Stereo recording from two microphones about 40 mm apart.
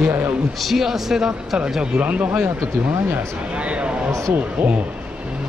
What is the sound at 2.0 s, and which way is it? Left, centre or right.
Speech, right.